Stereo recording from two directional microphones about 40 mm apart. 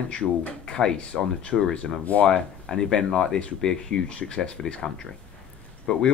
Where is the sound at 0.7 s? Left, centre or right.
Centre.